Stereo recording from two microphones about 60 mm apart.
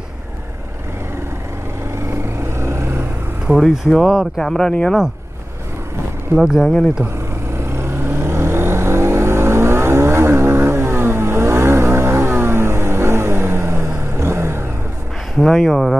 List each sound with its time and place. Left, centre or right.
2.6 s vehicle: right
3.5 s speech: centre
6.3 s speech: centre
7.7 s vehicle: right
15.3 s speech: centre